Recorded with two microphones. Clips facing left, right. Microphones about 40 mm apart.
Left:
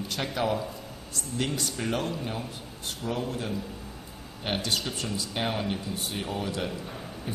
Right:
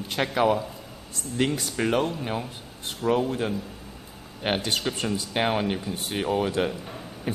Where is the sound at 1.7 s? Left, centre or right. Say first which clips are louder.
Right 6 dB; right.